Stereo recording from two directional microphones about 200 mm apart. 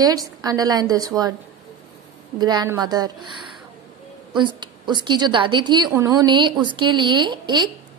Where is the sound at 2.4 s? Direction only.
20° right (ahead or behind).